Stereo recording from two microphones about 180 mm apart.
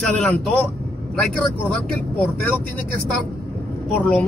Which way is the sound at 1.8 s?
10° left (ahead or behind).